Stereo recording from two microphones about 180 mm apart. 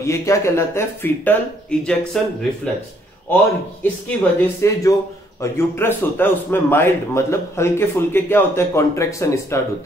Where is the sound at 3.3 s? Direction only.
10° left (ahead or behind).